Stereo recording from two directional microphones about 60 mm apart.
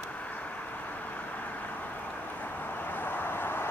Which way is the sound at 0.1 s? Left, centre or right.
Left.